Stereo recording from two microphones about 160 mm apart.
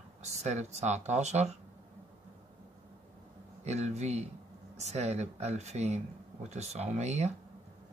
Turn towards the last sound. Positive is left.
turn(degrees=-45)  # may be behind; listen again after turning